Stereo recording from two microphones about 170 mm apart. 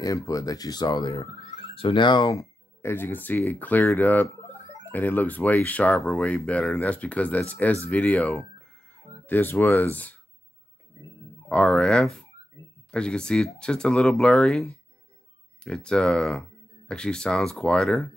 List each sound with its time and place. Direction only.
0.0 s speech: 20° left (ahead or behind)
1.1 s speech: 35° left (ahead or behind); by 10.1 s 10° left (ahead or behind)
11.4 s speech: 5° left (ahead or behind)